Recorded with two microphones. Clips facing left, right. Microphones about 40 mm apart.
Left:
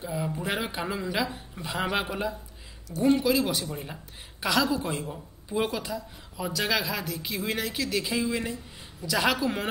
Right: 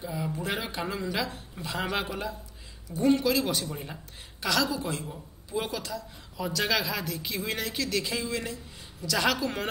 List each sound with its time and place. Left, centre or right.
0.0 s speech: centre
4.4 s speech: centre
6.4 s speech: centre